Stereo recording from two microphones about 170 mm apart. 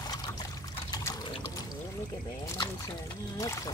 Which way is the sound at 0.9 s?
20° left (ahead or behind).